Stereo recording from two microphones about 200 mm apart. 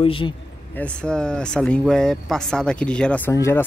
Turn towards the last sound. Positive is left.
turn(degrees=15)  # may be behind; listen again after turning